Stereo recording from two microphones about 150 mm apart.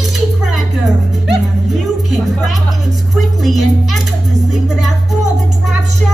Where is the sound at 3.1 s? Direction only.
Centre (ahead or behind).